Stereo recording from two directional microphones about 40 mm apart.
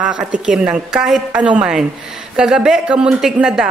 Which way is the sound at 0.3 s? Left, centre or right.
Right.